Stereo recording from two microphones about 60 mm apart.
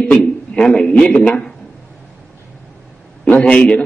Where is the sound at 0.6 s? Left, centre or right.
Centre.